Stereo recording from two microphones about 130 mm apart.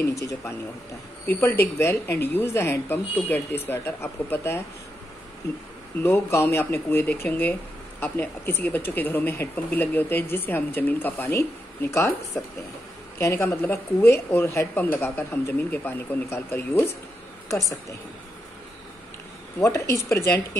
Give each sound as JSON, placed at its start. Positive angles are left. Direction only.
{"t": 0.0, "sound": "a woman's voice", "side_deg": 25}
{"t": 6.0, "sound": "speech", "side_deg": 15}
{"t": 13.2, "sound": "a woman's voice", "side_deg": 20}
{"t": 19.6, "sound": "a woman's voice", "side_deg": 20}